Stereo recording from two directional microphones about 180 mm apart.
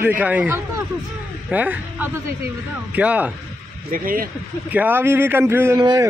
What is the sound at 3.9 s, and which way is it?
Speech, 50° right (ahead or behind).